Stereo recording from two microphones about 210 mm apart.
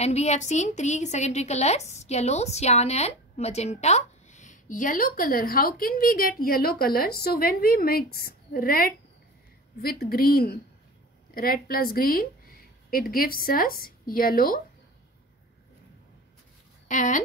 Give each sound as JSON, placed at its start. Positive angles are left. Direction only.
{"t": 0.0, "sound": "a woman's voice", "side_deg": 30}
{"t": 16.8, "sound": "speech", "side_deg": 35}